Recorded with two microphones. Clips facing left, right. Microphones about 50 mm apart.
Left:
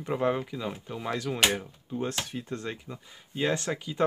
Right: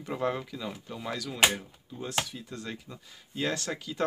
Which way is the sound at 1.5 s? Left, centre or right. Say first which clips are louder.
Left 6 dB; left.